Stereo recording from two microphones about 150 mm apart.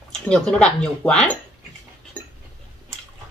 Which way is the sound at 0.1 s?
5° left (ahead or behind).